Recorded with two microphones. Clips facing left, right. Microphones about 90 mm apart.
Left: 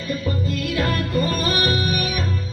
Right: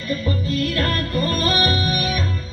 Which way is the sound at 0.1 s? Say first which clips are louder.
Right 2 dB; 10° left (ahead or behind).